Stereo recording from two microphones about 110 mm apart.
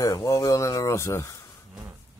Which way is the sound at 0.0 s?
30° left (ahead or behind).